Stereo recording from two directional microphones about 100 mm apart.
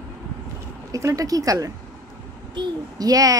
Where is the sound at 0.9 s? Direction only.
35° right (ahead or behind).